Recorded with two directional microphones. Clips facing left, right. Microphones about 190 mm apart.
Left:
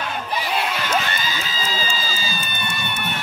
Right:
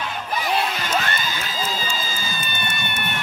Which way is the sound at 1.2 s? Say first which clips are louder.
Even; 55° right (ahead or behind).